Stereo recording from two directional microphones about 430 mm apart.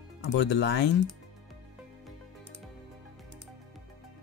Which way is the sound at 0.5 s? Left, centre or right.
Left.